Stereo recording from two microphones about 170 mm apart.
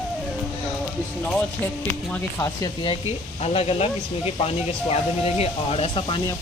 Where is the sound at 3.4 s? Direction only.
35° left (ahead or behind).